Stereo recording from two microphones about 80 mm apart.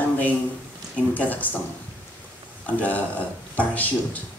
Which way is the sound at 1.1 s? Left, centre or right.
Left.